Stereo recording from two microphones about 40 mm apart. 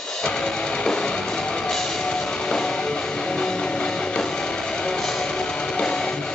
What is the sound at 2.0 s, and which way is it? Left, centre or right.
Music, left.